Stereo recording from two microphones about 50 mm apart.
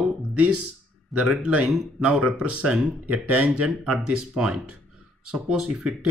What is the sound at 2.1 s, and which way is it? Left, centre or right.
Speech, centre.